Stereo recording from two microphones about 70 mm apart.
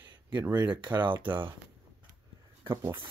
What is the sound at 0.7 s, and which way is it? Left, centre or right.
Speech, right.